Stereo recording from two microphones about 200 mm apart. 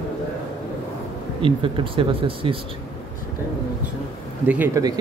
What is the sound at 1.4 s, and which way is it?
Speech, 25° right (ahead or behind).